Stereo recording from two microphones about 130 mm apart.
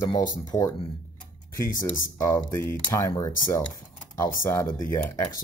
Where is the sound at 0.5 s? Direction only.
25° left (ahead or behind).